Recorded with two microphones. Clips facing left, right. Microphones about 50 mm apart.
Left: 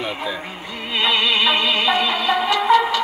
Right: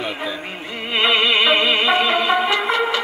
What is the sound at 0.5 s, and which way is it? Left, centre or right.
Music, right.